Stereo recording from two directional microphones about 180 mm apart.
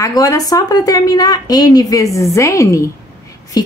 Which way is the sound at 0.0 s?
20° left (ahead or behind).